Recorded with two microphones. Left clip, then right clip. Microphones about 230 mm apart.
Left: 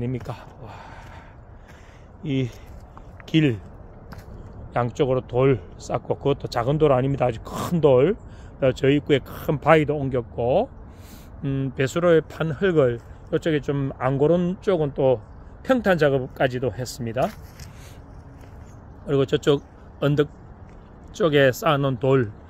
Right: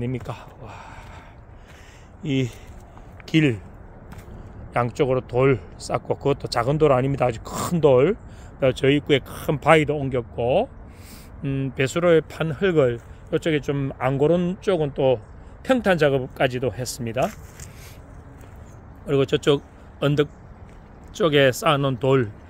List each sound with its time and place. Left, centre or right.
0.3 s speech: centre
2.2 s speech: centre
4.7 s speech: centre
19.0 s speech: centre